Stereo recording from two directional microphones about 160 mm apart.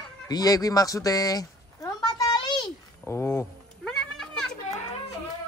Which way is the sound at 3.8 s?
5° left (ahead or behind).